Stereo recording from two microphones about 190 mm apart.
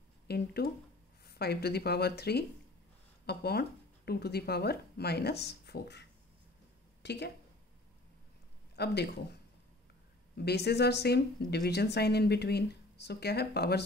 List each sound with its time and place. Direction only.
0.3 s speech: 55° left (ahead or behind)
8.7 s speech: 60° left (ahead or behind)
10.3 s speech: 60° left (ahead or behind)